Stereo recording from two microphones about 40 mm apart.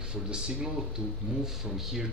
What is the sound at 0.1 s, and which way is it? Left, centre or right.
Speech, right.